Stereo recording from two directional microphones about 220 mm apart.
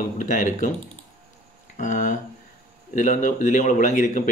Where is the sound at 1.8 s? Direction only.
35° left (ahead or behind).